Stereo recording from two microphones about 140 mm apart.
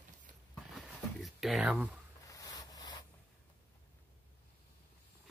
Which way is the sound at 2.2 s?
25° left (ahead or behind).